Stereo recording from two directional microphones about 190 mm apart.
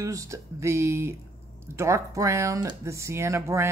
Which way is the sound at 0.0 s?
15° right (ahead or behind).